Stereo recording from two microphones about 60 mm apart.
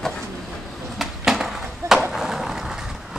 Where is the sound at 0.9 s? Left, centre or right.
Centre.